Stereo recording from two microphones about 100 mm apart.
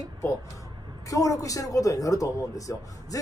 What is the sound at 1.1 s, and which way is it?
Speech, 35° left (ahead or behind).